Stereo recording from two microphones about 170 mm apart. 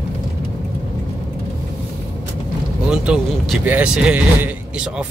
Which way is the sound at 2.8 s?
5° right (ahead or behind).